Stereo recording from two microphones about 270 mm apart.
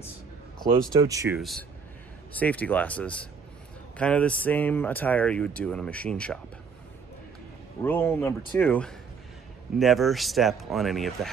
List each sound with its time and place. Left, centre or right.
1.0 s speech: centre
1.4 s speech: centre
7.8 s speech: centre